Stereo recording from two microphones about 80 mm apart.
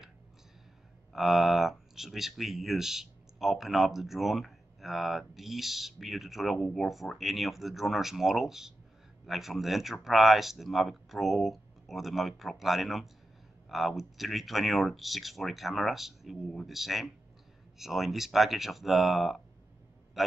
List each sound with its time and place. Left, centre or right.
1.1 s a man's voice: centre